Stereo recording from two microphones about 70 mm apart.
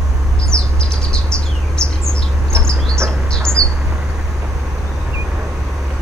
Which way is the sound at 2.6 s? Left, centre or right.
Centre.